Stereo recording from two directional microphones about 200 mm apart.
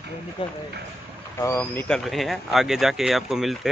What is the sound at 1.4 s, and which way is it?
Speech, 10° left (ahead or behind).